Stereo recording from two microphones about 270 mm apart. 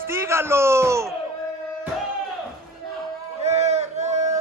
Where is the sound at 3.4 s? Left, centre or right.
Right.